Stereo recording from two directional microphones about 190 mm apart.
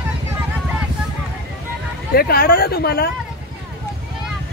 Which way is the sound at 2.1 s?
55° left (ahead or behind).